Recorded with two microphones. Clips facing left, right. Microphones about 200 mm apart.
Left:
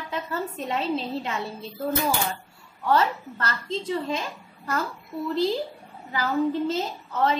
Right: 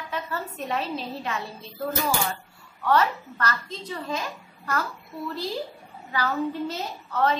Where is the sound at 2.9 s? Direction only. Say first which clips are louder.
Even; 25° left (ahead or behind).